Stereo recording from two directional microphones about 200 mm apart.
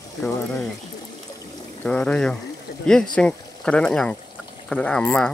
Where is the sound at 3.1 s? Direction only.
5° left (ahead or behind).